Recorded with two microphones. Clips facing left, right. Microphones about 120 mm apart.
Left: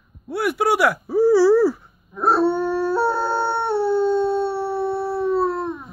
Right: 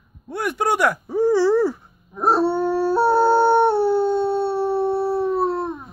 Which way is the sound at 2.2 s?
15° right (ahead or behind).